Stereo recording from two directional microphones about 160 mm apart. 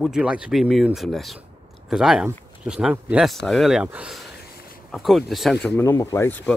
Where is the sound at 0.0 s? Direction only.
5° right (ahead or behind).